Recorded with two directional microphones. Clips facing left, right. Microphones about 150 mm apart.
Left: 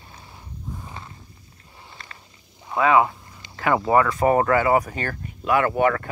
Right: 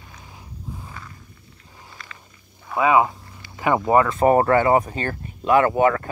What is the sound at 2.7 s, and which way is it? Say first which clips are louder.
Speech: even; 20° right (ahead or behind).